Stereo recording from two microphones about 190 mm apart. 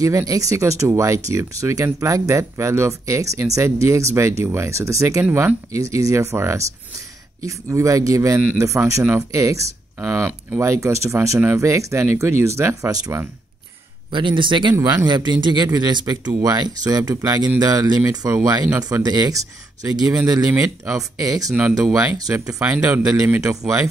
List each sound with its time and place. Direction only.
0.0 s speech: 15° right (ahead or behind)
14.1 s speech: 25° right (ahead or behind)
21.5 s speech: 10° right (ahead or behind)
22.1 s speech: 20° right (ahead or behind)